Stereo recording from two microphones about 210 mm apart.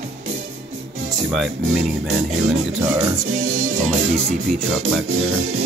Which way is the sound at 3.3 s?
90° right.